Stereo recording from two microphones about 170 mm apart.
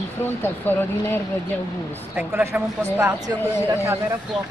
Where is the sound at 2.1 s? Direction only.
10° right (ahead or behind).